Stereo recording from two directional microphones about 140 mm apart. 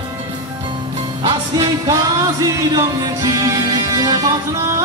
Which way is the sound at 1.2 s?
30° right (ahead or behind).